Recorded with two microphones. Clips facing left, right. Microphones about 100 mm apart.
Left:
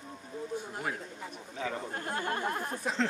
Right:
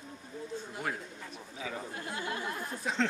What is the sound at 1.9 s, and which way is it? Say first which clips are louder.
Speech: left 4 dB; 50° left (ahead or behind).